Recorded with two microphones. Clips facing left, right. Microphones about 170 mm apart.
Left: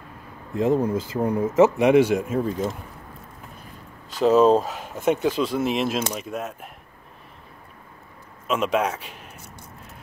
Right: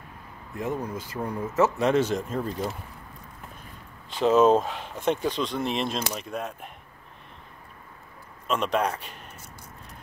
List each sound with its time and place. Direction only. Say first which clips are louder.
0.6 s speech: left 10 dB; 30° left (ahead or behind); by 2.6 s 5° left (ahead or behind)
4.2 s speech: left 3 dB; centre (ahead or behind)
8.5 s speech: left 3 dB; 5° left (ahead or behind)